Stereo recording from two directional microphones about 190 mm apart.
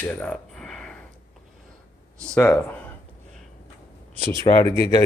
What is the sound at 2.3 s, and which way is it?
Speech, 10° left (ahead or behind).